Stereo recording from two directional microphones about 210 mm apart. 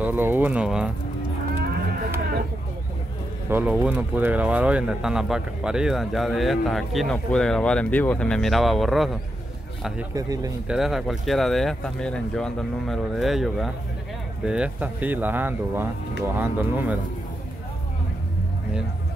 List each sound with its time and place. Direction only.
0.0 s speech: 10° right (ahead or behind)
3.4 s speech: 10° right (ahead or behind)
10.1 s speech: 15° right (ahead or behind)
10.7 s speech: centre (ahead or behind)